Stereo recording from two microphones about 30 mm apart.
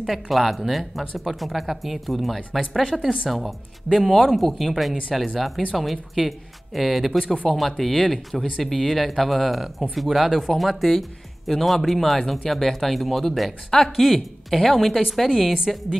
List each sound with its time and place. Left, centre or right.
0.0 s speech: centre
2.9 s a woman's voice: centre
3.3 s speech: centre
13.7 s speech: centre
13.9 s speech: centre
15.2 s a woman's voice: centre